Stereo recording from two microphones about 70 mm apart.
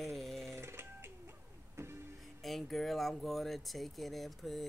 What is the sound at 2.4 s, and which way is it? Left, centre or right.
Speech, centre.